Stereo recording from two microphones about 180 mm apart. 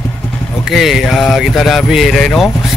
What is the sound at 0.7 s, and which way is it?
Speech, centre (ahead or behind).